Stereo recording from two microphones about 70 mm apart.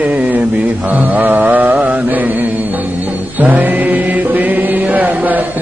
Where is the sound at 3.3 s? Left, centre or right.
Right.